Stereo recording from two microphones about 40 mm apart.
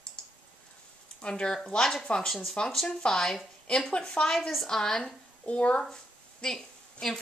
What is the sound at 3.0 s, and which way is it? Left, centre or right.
A woman's voice, centre.